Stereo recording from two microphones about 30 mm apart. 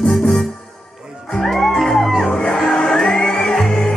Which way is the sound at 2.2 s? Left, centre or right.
Left.